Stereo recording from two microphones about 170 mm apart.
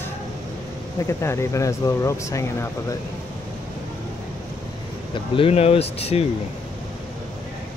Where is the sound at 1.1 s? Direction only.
15° left (ahead or behind).